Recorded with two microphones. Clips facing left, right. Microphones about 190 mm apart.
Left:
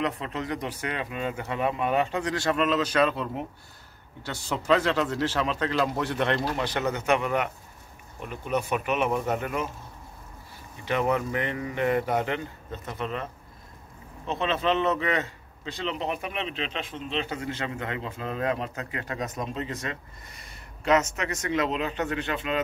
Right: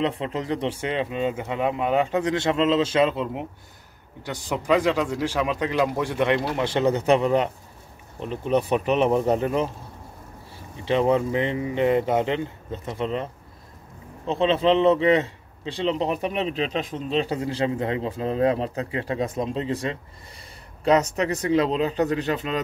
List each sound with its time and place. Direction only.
0.0 s speech: 30° right (ahead or behind); by 6.6 s 10° right (ahead or behind)
6.6 s a man's voice: 25° right (ahead or behind)
10.9 s a man's voice: 25° right (ahead or behind)